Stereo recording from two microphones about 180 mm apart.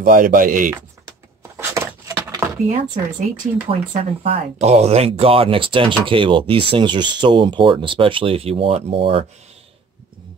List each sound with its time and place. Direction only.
0.0 s speech: 50° right (ahead or behind)
1.6 s a sound: 15° right (ahead or behind)
2.7 s speech: 45° right (ahead or behind)
3.9 s speech: 35° right (ahead or behind)